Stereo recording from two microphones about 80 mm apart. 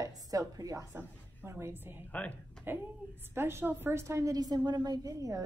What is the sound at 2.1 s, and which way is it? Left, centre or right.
Speech, centre.